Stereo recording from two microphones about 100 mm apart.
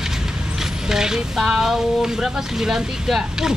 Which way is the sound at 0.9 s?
5° right (ahead or behind).